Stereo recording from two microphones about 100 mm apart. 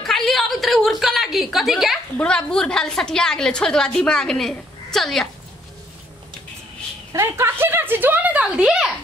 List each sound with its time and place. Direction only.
0.0 s a sound: centre (ahead or behind)
2.1 s a woman's voice: 10° left (ahead or behind)
7.1 s a woman's voice: 30° right (ahead or behind); by 8.9 s 5° right (ahead or behind)